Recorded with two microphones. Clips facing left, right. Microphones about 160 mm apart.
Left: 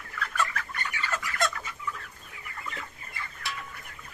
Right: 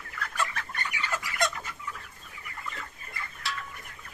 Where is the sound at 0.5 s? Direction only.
20° right (ahead or behind).